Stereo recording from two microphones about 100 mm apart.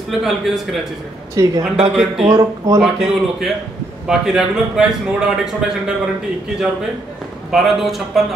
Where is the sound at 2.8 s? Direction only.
5° right (ahead or behind).